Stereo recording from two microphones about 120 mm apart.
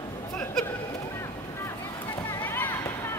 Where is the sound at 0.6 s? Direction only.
5° left (ahead or behind).